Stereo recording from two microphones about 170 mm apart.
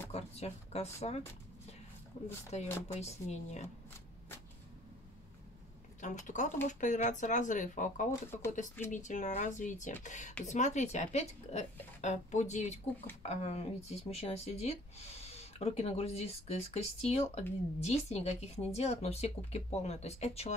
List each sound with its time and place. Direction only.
0.1 s speech: 35° left (ahead or behind)
2.5 s speech: 40° left (ahead or behind)
5.9 s a woman's voice: 45° left (ahead or behind)
8.1 s speech: 15° left (ahead or behind)
8.5 s a woman's voice: 45° left (ahead or behind)